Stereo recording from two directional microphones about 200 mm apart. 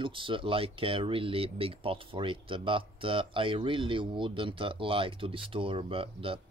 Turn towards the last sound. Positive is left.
turn(degrees=-25)  # may be behind; listen again after turning